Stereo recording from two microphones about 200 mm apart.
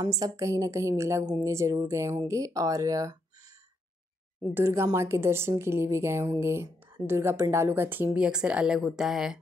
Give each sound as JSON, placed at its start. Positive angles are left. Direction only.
{"t": 0.0, "sound": "a woman's voice", "side_deg": -20}
{"t": 4.6, "sound": "a woman's voice", "side_deg": -15}